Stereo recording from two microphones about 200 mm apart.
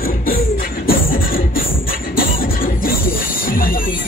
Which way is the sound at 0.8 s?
45° left (ahead or behind).